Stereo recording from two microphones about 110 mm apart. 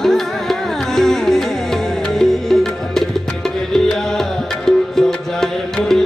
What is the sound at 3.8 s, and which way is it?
Music, 5° left (ahead or behind).